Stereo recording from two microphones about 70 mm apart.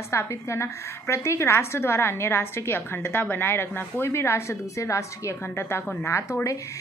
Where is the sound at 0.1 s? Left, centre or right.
Left.